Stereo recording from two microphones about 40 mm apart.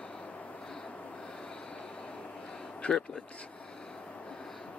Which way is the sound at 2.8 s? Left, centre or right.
Left.